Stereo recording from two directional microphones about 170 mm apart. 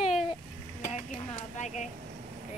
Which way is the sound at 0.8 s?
45° left (ahead or behind).